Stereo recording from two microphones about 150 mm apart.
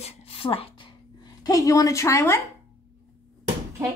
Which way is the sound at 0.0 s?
40° left (ahead or behind).